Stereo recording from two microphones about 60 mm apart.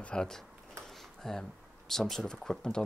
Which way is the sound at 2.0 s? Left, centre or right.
Centre.